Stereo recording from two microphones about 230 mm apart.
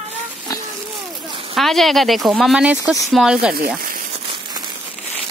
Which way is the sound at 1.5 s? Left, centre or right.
Centre.